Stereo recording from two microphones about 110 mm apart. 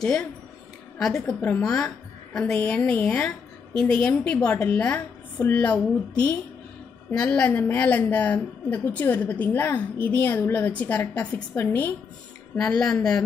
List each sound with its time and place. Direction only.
0.0 s a woman's voice: 5° left (ahead or behind)
12.5 s speech: 5° left (ahead or behind)